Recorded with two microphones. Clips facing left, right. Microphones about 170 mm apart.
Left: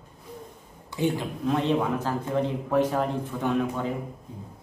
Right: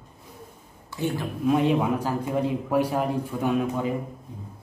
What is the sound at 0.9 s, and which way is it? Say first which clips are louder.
Speech: left 2 dB; 20° left (ahead or behind).